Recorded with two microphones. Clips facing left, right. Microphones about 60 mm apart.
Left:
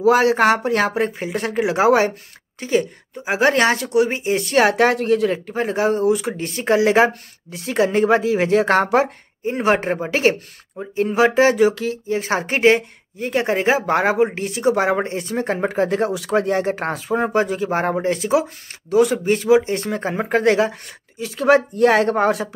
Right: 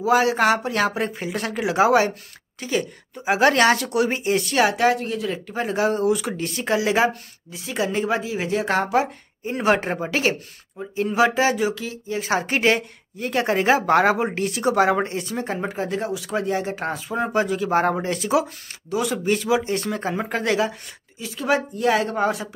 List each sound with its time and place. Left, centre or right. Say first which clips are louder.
0.0 s speech: left 4 dB; left; by 4.5 s centre
4.5 s speech: left 5 dB; left
4.7 s speech: left 4 dB; left
5.3 s speech: left 4 dB; left
9.4 s speech: left 2 dB; left
15.1 s speech: left 4 dB; left
16.3 s speech: left 5 dB; left
17.1 s speech: left 3 dB; left
17.6 s speech: left 1 dB; left
18.9 s speech: left 6 dB; left
21.2 s speech: left 7 dB; left